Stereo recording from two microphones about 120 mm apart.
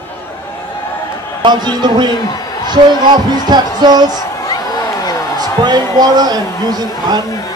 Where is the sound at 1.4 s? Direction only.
40° right (ahead or behind).